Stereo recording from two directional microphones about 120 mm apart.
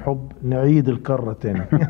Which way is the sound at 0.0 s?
15° right (ahead or behind).